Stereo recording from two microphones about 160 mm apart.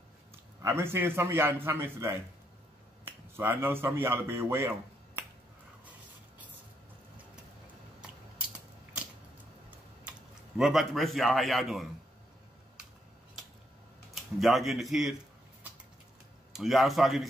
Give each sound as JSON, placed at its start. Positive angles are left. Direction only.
{"t": 0.6, "sound": "a man's voice", "side_deg": -15}
{"t": 10.6, "sound": "a man's voice", "side_deg": 0}
{"t": 14.1, "sound": "a man's voice", "side_deg": 0}
{"t": 16.5, "sound": "a man's voice", "side_deg": 0}